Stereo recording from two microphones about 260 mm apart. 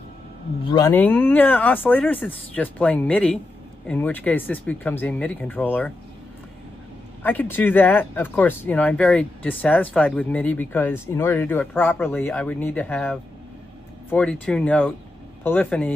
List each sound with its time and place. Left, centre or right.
0.7 s speech: centre
7.2 s speech: centre